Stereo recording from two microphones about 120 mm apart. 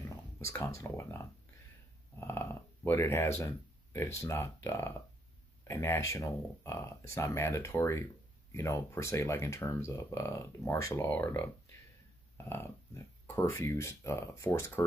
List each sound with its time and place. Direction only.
0.1 s speech: 25° left (ahead or behind)